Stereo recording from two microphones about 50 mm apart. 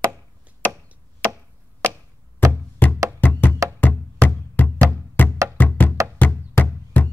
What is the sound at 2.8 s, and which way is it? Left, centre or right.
Music, left.